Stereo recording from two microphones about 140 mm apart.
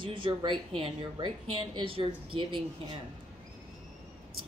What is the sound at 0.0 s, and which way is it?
Speech, 35° right (ahead or behind).